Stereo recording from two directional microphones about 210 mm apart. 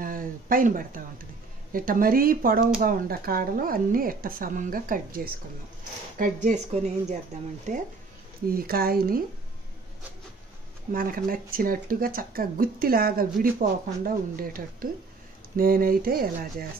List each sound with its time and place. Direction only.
0.0 s a sound: 40° right (ahead or behind)
1.7 s speech: 40° right (ahead or behind)
8.5 s speech: 45° right (ahead or behind)
10.9 s speech: 40° right (ahead or behind)